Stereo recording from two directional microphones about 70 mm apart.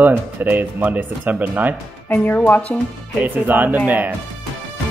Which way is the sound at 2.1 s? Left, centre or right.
Centre.